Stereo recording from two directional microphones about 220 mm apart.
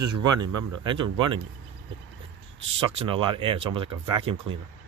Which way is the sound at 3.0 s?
20° right (ahead or behind).